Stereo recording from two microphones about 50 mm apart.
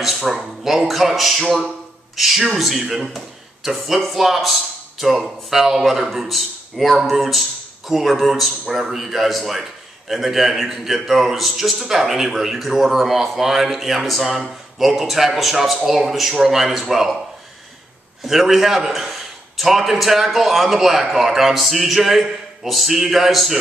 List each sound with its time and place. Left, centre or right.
0.0 s a man's voice: centre
18.2 s a man's voice: centre